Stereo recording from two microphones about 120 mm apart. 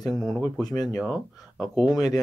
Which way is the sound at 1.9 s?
35° left (ahead or behind).